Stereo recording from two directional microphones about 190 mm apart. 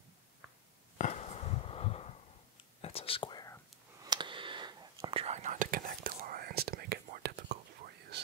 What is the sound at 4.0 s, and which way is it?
Whispering, 25° right (ahead or behind).